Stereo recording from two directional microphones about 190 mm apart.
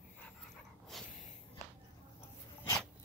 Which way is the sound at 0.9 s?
Centre (ahead or behind).